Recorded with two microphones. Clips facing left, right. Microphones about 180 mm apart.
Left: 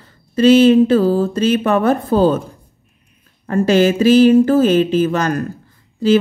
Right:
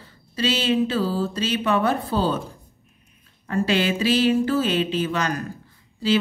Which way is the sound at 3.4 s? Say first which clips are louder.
Left 9 dB; 45° left (ahead or behind).